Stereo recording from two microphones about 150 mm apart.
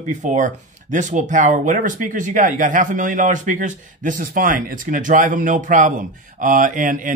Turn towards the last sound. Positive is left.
turn(degrees=-60)  # may be behind; listen again after turning